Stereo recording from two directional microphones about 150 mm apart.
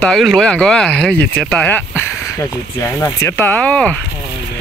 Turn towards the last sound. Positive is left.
turn(degrees=5)  # may be behind; listen again after turning